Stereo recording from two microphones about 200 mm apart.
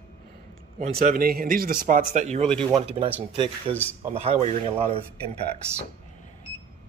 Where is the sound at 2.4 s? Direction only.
5° left (ahead or behind).